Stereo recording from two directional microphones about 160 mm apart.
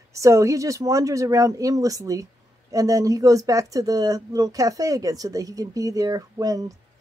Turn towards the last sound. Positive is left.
turn(degrees=-20)  # may be behind; listen again after turning